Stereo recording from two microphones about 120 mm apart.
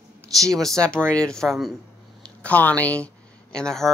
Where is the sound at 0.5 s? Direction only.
5° left (ahead or behind).